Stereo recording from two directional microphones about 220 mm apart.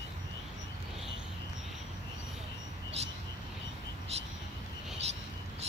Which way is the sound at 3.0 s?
30° right (ahead or behind).